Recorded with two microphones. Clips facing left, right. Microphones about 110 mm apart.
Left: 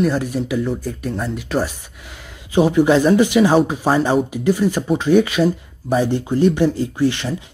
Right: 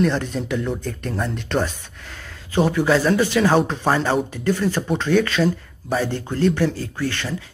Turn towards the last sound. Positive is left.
turn(degrees=15)  # may be behind; listen again after turning